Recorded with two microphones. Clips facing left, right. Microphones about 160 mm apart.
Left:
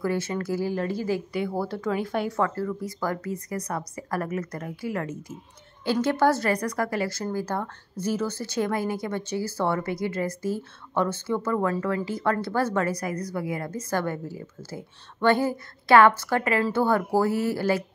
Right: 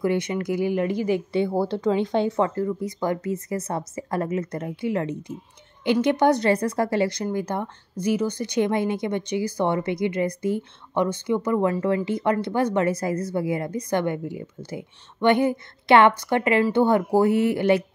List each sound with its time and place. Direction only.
0.0 s speech: 20° right (ahead or behind)